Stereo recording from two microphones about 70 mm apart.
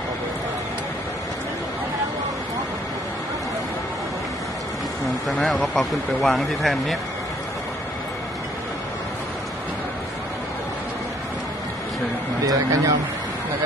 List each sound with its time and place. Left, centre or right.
5.4 s speech: centre
12.4 s speech: right